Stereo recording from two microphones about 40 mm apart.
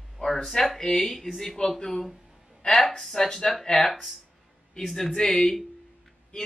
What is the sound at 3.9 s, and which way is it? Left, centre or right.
Speech, centre.